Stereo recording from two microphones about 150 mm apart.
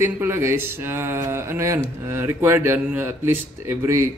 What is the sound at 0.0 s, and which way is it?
Speech, 15° right (ahead or behind).